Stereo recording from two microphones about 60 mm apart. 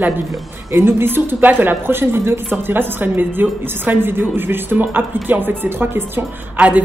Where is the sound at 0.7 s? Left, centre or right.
Right.